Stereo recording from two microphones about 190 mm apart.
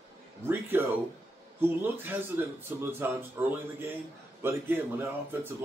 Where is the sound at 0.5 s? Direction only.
10° right (ahead or behind).